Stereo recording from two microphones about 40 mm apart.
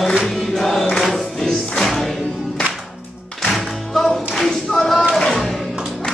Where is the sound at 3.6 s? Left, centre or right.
Centre.